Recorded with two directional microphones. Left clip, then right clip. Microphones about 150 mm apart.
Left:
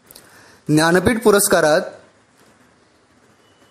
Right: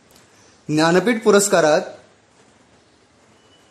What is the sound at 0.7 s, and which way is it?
A man's voice, 35° left (ahead or behind).